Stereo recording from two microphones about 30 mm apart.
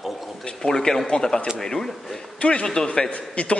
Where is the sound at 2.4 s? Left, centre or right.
Left.